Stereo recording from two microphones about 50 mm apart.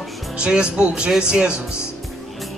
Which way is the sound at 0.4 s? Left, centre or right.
Centre.